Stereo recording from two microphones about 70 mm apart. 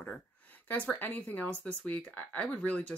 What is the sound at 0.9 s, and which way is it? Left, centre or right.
Speech, left.